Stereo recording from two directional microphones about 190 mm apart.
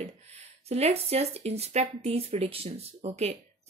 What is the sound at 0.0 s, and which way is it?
Speech, 35° right (ahead or behind).